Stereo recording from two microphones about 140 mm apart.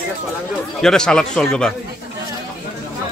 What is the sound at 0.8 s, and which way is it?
Speech, 5° left (ahead or behind).